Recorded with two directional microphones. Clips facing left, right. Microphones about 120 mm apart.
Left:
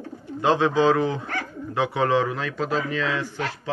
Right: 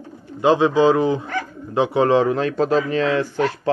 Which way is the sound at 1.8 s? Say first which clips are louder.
Right 5 dB; 30° right (ahead or behind).